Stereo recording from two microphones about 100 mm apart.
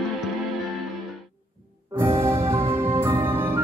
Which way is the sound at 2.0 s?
25° right (ahead or behind).